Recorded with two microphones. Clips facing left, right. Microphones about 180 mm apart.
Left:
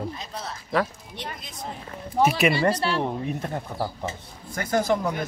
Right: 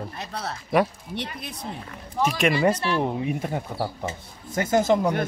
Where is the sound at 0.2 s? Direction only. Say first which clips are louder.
Right 3 dB; 65° right (ahead or behind).